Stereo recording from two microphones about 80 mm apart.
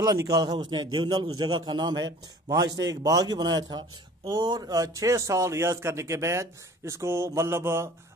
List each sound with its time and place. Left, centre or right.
0.0 s a man's voice: right